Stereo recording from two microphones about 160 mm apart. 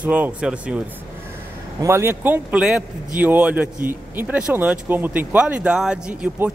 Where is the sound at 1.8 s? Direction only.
15° right (ahead or behind).